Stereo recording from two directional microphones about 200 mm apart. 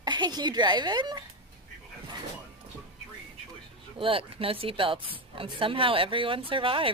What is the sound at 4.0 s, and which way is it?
A woman's voice, 25° right (ahead or behind).